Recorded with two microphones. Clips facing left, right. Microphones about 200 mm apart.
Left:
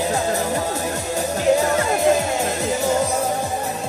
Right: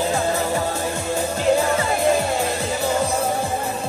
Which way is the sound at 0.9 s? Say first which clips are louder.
Even; 40° left (ahead or behind).